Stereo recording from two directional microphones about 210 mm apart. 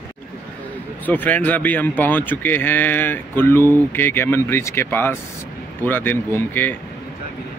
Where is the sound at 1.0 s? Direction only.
10° left (ahead or behind).